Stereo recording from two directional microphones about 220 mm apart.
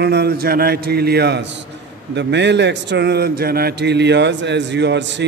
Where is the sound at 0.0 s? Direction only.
50° right (ahead or behind).